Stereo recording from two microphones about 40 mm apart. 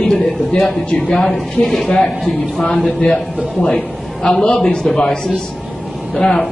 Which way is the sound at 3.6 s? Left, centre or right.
Centre.